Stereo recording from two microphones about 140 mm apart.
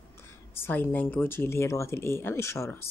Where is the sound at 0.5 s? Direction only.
15° left (ahead or behind).